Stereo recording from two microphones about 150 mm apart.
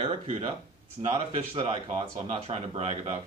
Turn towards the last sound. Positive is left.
turn(degrees=-40)  # may be behind; listen again after turning